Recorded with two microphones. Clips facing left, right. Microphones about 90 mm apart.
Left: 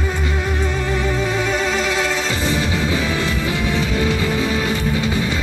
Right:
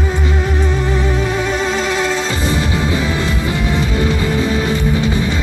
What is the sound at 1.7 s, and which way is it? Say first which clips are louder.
Music: right 3 dB; 20° right (ahead or behind).